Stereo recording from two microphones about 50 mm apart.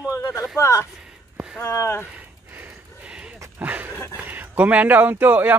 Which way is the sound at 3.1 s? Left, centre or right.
Right.